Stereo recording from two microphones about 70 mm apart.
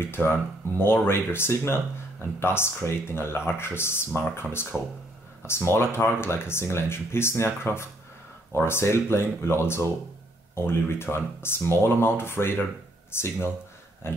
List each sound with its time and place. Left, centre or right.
0.0 s speech: left